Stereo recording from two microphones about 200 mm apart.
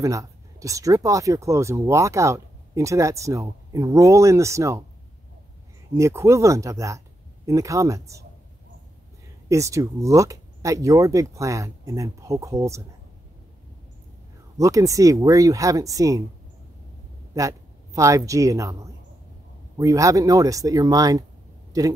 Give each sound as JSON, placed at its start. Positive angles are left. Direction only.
{"t": 0.0, "sound": "speech", "side_deg": -15}
{"t": 5.9, "sound": "speech", "side_deg": -15}
{"t": 9.5, "sound": "speech", "side_deg": -15}
{"t": 14.6, "sound": "speech", "side_deg": -15}
{"t": 17.3, "sound": "speech", "side_deg": -15}